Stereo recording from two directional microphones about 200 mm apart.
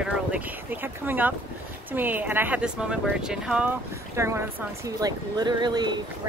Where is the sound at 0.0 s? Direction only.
5° right (ahead or behind).